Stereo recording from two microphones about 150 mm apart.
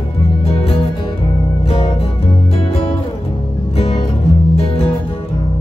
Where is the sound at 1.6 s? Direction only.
40° left (ahead or behind).